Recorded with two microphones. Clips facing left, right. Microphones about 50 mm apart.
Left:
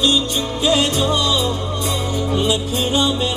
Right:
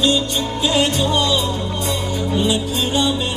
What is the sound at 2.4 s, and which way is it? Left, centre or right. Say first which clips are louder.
Music: right 1 dB; left.